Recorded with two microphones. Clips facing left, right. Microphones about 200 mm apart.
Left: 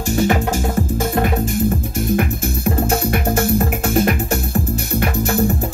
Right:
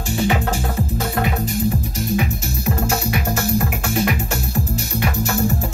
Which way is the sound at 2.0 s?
55° left (ahead or behind).